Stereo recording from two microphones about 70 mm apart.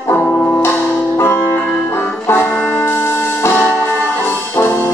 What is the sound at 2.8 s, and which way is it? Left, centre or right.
Music, left.